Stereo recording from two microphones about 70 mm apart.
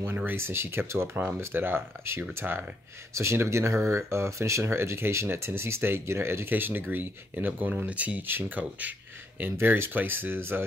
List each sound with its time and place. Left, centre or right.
0.0 s speech: right